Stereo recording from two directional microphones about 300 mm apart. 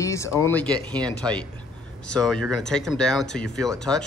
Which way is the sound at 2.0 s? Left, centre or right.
Centre.